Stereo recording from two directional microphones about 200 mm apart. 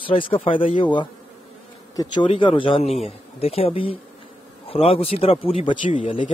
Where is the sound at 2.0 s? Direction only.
25° left (ahead or behind).